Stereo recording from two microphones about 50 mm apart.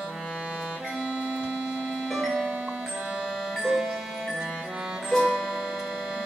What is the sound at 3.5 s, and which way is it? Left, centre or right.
Music, centre.